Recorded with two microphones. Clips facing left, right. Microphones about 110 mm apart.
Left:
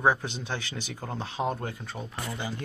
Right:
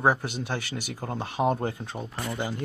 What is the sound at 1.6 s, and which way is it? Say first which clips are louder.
Speech: right 5 dB; 25° right (ahead or behind).